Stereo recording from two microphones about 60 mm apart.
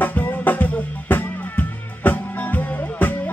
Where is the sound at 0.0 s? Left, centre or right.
Left.